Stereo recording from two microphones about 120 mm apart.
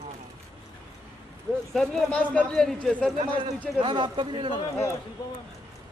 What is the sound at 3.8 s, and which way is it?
Speech, 40° right (ahead or behind).